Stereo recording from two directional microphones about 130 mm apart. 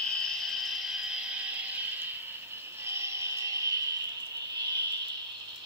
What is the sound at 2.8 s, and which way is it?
Music, 20° right (ahead or behind).